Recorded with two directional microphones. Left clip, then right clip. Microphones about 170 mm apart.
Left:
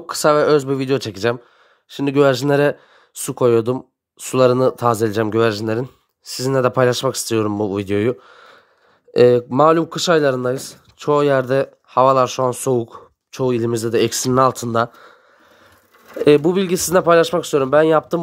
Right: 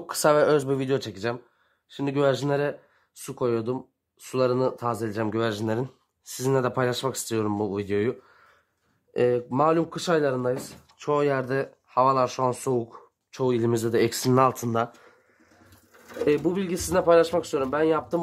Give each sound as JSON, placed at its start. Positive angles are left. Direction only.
{"t": 0.0, "sound": "speech", "side_deg": 15}
{"t": 16.3, "sound": "speech", "side_deg": 35}